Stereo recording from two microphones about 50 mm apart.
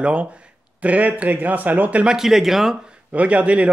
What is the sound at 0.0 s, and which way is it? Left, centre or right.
A man's voice, right.